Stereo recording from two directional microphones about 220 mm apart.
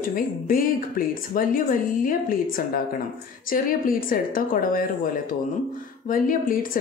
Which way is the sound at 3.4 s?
40° left (ahead or behind).